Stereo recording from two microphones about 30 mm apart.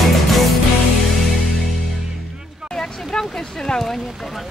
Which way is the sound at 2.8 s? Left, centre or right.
Left.